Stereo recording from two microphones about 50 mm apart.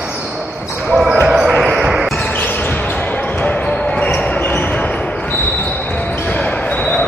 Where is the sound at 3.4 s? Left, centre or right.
Left.